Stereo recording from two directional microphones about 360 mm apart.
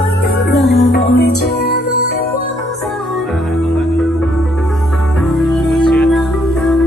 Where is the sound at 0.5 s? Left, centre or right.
Centre.